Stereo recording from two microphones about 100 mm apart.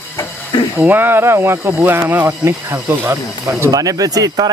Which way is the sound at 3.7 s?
35° right (ahead or behind).